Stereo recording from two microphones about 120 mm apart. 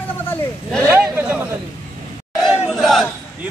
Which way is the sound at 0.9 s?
20° right (ahead or behind).